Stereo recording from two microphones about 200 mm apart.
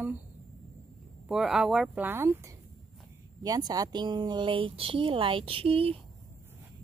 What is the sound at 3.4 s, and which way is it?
A woman's voice, 20° right (ahead or behind).